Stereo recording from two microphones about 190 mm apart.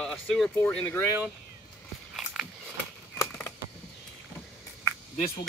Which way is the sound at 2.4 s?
Centre (ahead or behind).